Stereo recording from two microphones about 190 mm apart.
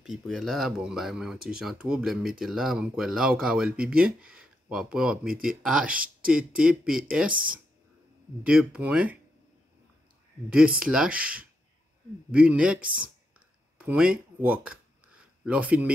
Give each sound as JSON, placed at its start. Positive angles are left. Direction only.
{"t": 0.0, "sound": "speech", "side_deg": 0}
{"t": 7.3, "sound": "speech", "side_deg": -50}
{"t": 8.5, "sound": "speech", "side_deg": -5}
{"t": 10.8, "sound": "speech", "side_deg": -5}
{"t": 13.7, "sound": "speech", "side_deg": -5}
{"t": 14.4, "sound": "a sound", "side_deg": -5}